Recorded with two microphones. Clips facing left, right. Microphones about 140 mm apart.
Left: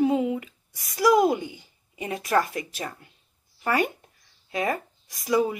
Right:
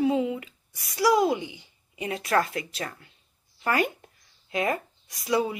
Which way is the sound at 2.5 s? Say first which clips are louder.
Even; 30° left (ahead or behind).